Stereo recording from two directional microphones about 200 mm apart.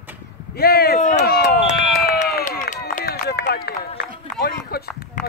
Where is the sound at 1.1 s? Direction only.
50° left (ahead or behind).